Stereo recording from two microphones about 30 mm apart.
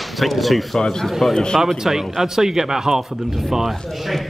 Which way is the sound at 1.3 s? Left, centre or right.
Left.